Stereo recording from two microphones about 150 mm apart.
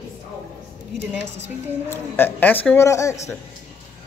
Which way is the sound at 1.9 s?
15° left (ahead or behind).